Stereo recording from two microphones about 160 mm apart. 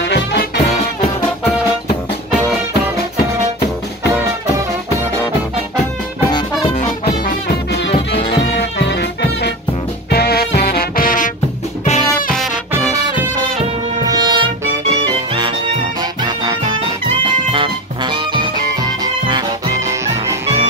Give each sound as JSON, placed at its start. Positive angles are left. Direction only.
{"t": 0.1, "sound": "music", "side_deg": 90}
{"t": 8.5, "sound": "music", "side_deg": 90}
{"t": 10.1, "sound": "music", "side_deg": 75}
{"t": 14.0, "sound": "music", "side_deg": -25}
{"t": 19.2, "sound": "music", "side_deg": -25}